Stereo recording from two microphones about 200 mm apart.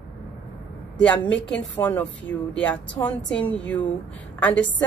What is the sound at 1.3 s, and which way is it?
A woman's voice, 5° left (ahead or behind).